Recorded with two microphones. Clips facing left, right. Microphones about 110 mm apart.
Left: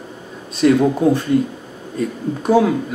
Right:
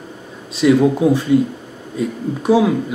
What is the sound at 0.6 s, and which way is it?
Speech, 5° right (ahead or behind).